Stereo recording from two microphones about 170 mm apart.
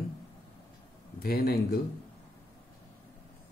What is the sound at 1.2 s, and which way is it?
Speech, 65° left (ahead or behind).